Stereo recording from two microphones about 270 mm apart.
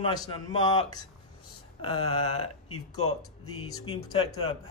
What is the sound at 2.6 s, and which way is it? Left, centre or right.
Speech, left.